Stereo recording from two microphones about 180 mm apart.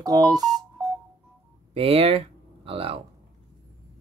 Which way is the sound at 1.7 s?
30° right (ahead or behind).